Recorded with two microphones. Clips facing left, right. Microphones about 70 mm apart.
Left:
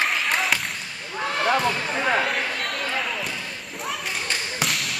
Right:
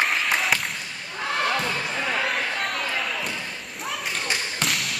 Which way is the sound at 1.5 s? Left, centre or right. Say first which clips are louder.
Left 4 dB; left.